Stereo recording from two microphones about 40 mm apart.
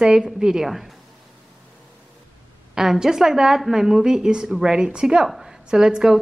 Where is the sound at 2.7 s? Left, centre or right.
Centre.